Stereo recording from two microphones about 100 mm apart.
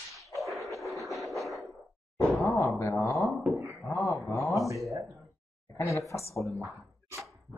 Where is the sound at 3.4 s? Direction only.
15° right (ahead or behind).